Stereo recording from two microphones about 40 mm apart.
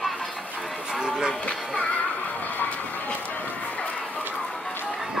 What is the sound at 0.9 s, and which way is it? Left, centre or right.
Music, centre.